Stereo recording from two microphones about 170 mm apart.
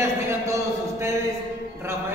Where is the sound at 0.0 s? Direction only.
15° right (ahead or behind).